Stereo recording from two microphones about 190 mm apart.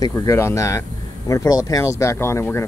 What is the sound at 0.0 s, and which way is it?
Speech, 15° left (ahead or behind).